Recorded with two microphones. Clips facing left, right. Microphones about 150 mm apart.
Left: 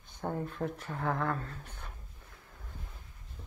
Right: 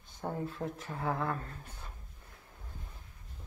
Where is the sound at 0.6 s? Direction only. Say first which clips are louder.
Left 5 dB; 10° left (ahead or behind).